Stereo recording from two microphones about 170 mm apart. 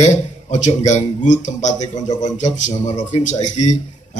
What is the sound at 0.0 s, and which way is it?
A man's voice, 45° left (ahead or behind).